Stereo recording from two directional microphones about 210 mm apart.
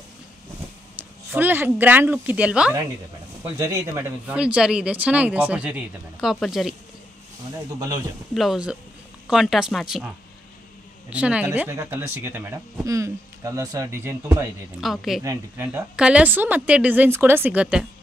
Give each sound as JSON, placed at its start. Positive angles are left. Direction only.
{"t": 1.3, "sound": "speech", "side_deg": -10}
{"t": 7.5, "sound": "speech", "side_deg": -15}
{"t": 8.4, "sound": "speech", "side_deg": -5}
{"t": 14.8, "sound": "speech", "side_deg": 0}